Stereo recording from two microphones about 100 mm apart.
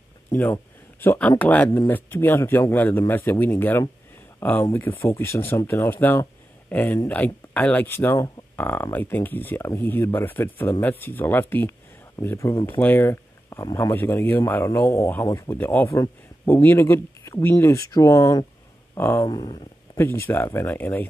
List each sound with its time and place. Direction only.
0.3 s speech: 20° left (ahead or behind)
19.2 s speech: 50° left (ahead or behind)
20.0 s speech: 25° left (ahead or behind)